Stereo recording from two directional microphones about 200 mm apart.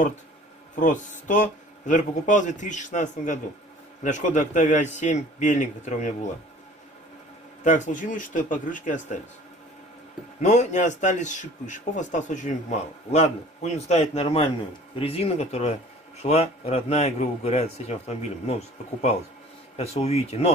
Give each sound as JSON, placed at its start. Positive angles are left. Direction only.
{"t": 0.7, "sound": "a man's voice", "side_deg": 40}
{"t": 7.6, "sound": "a man's voice", "side_deg": 40}
{"t": 10.4, "sound": "a man's voice", "side_deg": 35}